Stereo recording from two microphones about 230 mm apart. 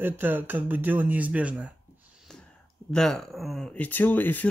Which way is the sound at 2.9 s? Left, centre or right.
Centre.